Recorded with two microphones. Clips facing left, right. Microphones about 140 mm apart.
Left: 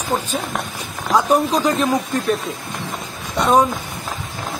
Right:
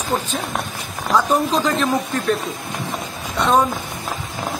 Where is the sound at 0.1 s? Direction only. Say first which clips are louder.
Left 1 dB; 10° left (ahead or behind).